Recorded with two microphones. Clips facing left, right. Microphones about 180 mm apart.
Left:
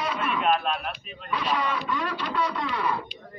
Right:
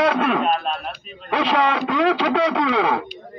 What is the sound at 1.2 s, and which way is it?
Speech, 85° right.